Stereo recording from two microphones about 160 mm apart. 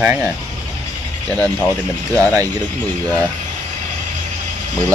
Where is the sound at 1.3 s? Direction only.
5° left (ahead or behind).